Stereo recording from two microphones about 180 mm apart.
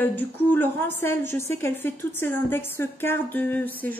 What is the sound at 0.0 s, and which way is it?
Speech, 10° left (ahead or behind).